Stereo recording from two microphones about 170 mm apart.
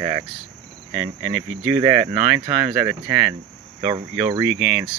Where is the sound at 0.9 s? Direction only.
10° right (ahead or behind).